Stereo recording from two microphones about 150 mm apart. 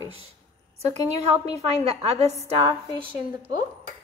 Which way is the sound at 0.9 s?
45° right (ahead or behind).